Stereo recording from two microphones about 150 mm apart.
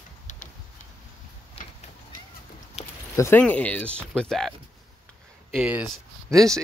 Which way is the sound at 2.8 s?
50° left (ahead or behind).